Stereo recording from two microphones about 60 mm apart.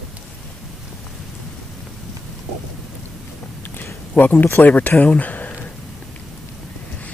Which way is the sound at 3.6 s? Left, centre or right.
Left.